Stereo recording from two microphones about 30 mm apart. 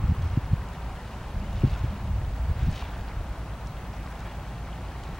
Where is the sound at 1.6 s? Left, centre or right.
Centre.